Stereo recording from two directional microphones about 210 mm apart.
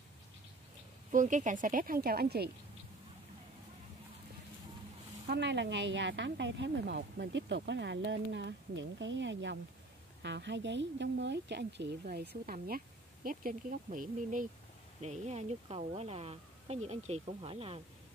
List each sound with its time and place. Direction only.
1.1 s speech: 35° right (ahead or behind)
5.2 s a woman's voice: 55° right (ahead or behind); by 17.7 s 25° right (ahead or behind)